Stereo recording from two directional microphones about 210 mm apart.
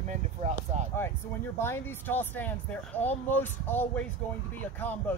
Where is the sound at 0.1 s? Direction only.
35° right (ahead or behind).